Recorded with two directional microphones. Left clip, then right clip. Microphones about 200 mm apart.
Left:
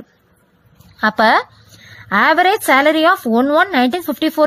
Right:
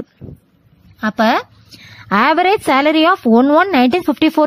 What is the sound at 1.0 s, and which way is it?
Speech, 10° right (ahead or behind).